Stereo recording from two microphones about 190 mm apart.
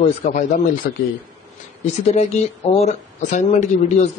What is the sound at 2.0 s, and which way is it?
A man's voice, 35° left (ahead or behind).